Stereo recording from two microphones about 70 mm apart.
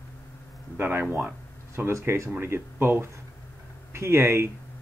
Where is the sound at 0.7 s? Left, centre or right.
Right.